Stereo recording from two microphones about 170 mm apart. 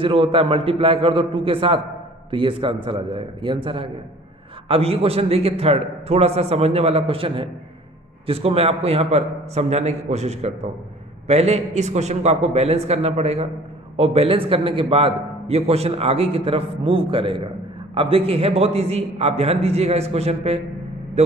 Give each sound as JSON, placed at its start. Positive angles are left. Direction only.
{"t": 0.0, "sound": "a man's voice", "side_deg": -30}